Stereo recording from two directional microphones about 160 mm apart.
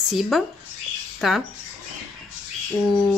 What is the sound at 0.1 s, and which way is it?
Speech, centre (ahead or behind).